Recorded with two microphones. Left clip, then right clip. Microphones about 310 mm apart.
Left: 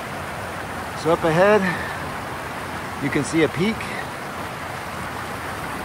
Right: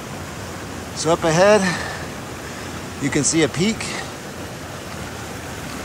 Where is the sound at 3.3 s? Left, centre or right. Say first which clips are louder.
Even; centre.